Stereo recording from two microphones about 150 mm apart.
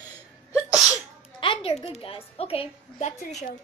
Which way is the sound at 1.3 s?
35° left (ahead or behind).